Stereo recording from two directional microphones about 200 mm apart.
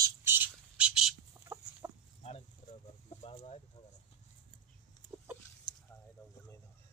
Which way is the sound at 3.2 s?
30° left (ahead or behind).